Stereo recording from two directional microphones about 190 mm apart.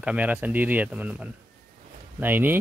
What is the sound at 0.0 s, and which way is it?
Speech, 5° right (ahead or behind).